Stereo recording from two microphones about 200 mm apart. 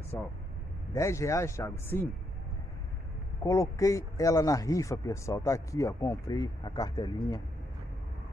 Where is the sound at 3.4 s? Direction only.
15° left (ahead or behind).